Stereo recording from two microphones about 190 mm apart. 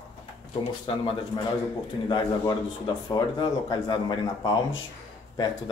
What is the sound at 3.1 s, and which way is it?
Speech, 25° left (ahead or behind).